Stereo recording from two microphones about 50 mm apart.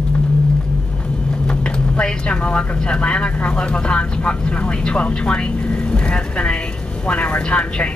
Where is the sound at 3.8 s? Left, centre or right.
Centre.